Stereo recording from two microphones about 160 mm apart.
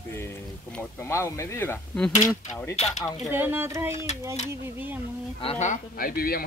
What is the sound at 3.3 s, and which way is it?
Speech, 15° right (ahead or behind).